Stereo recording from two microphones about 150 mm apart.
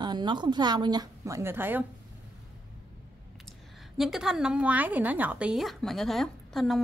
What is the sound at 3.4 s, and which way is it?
A woman's voice, centre (ahead or behind).